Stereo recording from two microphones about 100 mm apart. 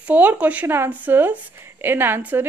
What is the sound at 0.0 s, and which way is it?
A woman's voice, 15° right (ahead or behind).